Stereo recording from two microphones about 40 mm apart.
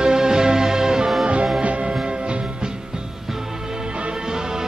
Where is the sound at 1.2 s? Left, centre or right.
Right.